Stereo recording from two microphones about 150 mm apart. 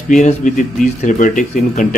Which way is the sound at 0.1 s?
55° left (ahead or behind).